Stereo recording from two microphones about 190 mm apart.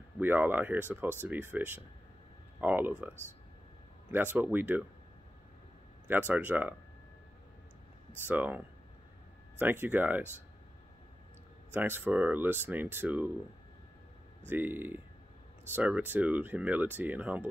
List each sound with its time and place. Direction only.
0.2 s speech: 10° right (ahead or behind)
4.1 s speech: 10° right (ahead or behind)
6.0 s speech: 10° right (ahead or behind)
8.3 s speech: 10° right (ahead or behind)
11.7 s speech: 10° right (ahead or behind)
14.5 s speech: 10° right (ahead or behind)